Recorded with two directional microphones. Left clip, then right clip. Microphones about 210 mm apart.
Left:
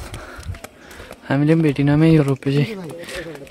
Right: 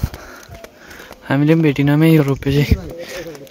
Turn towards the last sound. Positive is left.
turn(degrees=-10)  # may be behind; listen again after turning